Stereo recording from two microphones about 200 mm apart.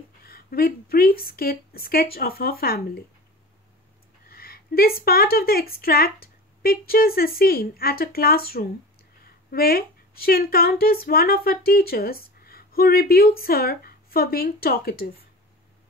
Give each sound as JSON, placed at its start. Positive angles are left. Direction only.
{"t": 0.2, "sound": "a woman's voice", "side_deg": 50}
{"t": 4.3, "sound": "a woman's voice", "side_deg": 50}